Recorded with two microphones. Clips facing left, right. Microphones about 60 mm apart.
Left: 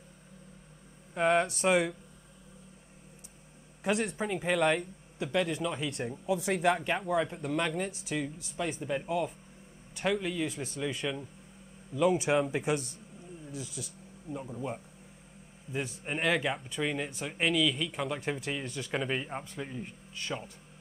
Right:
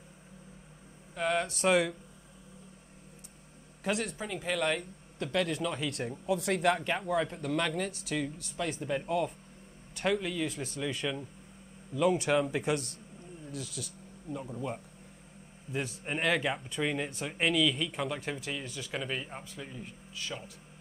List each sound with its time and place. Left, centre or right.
1.1 s speech: left
1.6 s speech: centre
3.8 s speech: centre